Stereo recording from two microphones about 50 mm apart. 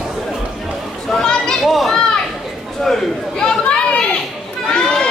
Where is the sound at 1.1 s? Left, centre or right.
Centre.